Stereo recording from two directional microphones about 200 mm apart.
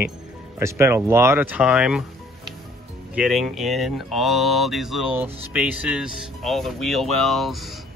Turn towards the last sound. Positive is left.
turn(degrees=0)  # may be behind; listen again after turning